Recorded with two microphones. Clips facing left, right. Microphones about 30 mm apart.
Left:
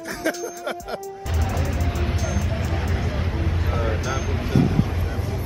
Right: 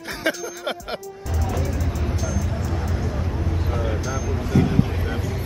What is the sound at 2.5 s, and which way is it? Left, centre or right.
Music, left.